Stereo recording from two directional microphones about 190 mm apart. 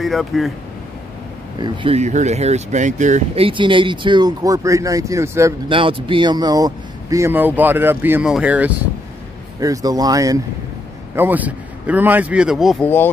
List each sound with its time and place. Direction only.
0.0 s speech: centre (ahead or behind)
1.6 s speech: 30° right (ahead or behind)
5.7 s speech: 25° right (ahead or behind); by 8.7 s 10° right (ahead or behind)
9.6 s speech: 20° right (ahead or behind); by 12.8 s centre (ahead or behind)
12.8 s speech: 10° left (ahead or behind)